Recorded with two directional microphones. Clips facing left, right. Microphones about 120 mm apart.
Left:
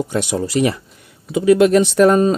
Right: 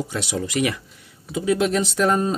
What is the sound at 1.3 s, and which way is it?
Speech, 65° left (ahead or behind).